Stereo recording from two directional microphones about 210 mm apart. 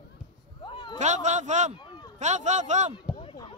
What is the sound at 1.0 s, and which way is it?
Speech, 35° right (ahead or behind).